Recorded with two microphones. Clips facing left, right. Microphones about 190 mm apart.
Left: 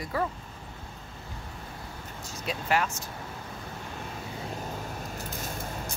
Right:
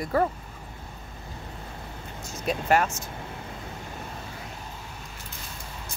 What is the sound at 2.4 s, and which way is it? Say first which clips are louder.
Speech: right 5 dB; 50° right (ahead or behind).